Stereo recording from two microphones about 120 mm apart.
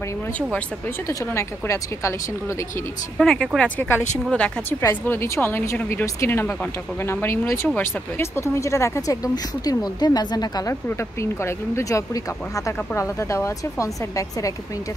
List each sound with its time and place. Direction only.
1.0 s speech: 25° left (ahead or behind)
3.2 s a woman's voice: 5° left (ahead or behind); by 10.8 s 35° left (ahead or behind)
10.9 s speech: 20° left (ahead or behind)